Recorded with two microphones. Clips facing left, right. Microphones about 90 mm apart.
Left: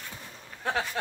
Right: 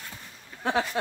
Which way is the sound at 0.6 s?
25° right (ahead or behind).